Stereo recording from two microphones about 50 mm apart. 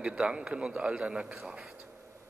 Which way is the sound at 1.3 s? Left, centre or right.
Centre.